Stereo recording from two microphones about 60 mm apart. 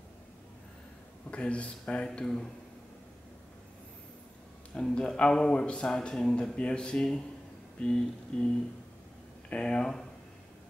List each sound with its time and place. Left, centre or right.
1.3 s a man's voice: centre
4.7 s a man's voice: centre
9.5 s a man's voice: centre